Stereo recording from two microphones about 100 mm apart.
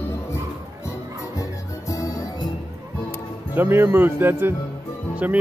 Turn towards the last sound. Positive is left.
turn(degrees=-15)  # may be behind; listen again after turning